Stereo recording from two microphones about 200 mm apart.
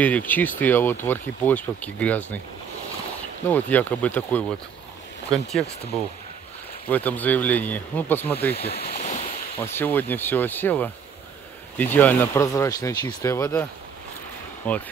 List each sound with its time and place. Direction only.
0.0 s speech: 10° left (ahead or behind)
3.4 s speech: 10° left (ahead or behind)
6.9 s speech: 10° left (ahead or behind)
8.5 s speech: 50° left (ahead or behind)
9.0 s boat: 35° left (ahead or behind)
9.6 s speech: 10° left (ahead or behind)